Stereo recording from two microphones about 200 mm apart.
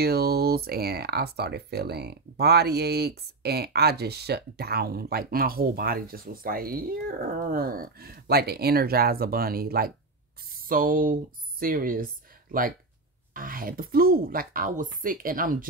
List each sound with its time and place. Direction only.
0.0 s speech: 50° right (ahead or behind)